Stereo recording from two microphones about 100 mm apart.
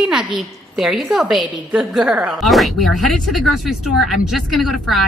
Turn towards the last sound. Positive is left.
turn(degrees=0)  # may be behind; listen again after turning